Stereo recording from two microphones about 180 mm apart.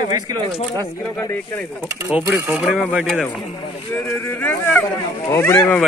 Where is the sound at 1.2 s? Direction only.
15° left (ahead or behind).